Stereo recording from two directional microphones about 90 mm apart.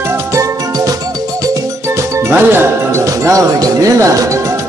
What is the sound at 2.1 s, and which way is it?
Speech, 25° right (ahead or behind).